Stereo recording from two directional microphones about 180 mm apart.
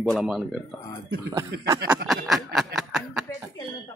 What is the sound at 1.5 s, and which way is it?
Speech, 65° right (ahead or behind).